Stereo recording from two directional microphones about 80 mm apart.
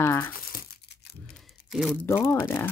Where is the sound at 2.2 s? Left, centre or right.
Left.